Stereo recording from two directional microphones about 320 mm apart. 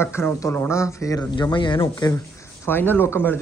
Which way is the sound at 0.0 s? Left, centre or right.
Centre.